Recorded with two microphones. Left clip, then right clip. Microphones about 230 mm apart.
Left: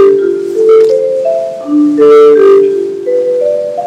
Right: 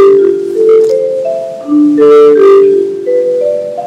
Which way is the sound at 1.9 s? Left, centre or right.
Centre.